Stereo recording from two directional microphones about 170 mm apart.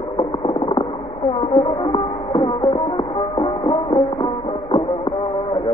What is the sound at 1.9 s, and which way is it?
Music, 30° left (ahead or behind).